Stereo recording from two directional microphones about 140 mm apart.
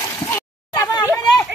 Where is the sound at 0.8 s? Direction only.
20° left (ahead or behind).